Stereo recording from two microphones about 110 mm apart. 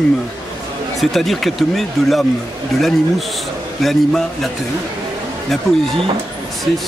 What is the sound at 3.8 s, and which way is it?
Speech, centre (ahead or behind).